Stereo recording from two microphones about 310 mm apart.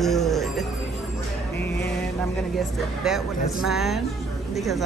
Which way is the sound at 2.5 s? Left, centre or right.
Centre.